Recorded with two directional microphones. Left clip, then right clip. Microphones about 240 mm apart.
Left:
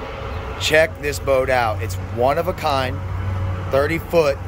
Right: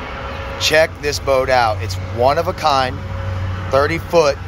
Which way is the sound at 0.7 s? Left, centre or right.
Centre.